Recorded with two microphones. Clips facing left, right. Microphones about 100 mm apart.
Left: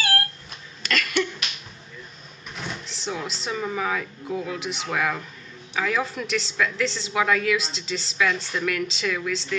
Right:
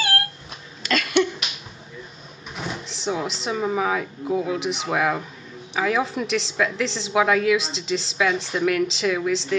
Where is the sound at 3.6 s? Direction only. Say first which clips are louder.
Right 4 dB; 15° right (ahead or behind).